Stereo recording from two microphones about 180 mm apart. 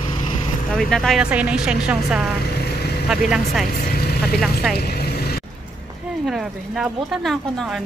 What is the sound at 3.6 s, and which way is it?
Vehicle, 50° left (ahead or behind).